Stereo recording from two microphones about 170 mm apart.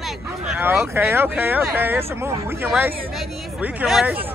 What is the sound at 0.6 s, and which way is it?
Speech, 10° right (ahead or behind).